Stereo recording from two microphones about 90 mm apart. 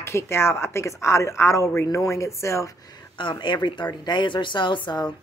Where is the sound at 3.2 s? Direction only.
65° left (ahead or behind).